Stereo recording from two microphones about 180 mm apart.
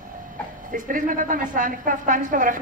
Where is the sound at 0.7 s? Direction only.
50° right (ahead or behind).